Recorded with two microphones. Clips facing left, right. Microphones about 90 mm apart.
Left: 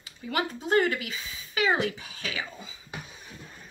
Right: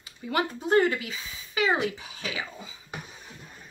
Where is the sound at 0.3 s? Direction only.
25° right (ahead or behind).